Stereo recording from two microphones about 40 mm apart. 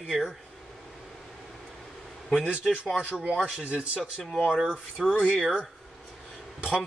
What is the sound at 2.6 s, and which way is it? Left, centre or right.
Speech, centre.